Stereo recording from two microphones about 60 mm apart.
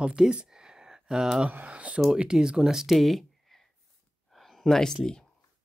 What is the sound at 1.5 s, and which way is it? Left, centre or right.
Speech, right.